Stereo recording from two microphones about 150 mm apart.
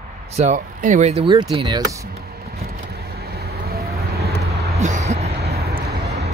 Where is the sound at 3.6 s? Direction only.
90° right.